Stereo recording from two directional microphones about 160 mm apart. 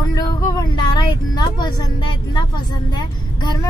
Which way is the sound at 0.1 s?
25° left (ahead or behind).